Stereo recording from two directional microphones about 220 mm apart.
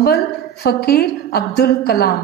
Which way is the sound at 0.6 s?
45° left (ahead or behind).